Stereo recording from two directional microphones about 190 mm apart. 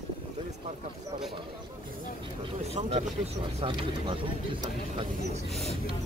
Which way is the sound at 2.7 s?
35° right (ahead or behind).